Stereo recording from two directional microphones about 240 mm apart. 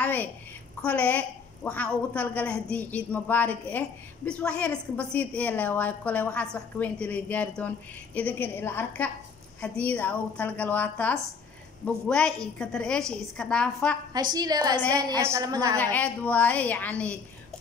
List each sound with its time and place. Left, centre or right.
0.0 s a sound: centre
0.8 s a woman's voice: centre
14.1 s a woman's voice: centre
15.8 s a woman's voice: centre